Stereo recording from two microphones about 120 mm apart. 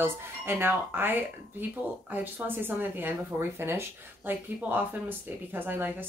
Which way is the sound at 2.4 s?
15° right (ahead or behind).